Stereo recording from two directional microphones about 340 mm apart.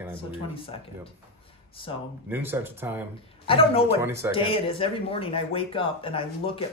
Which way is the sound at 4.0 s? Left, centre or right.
Centre.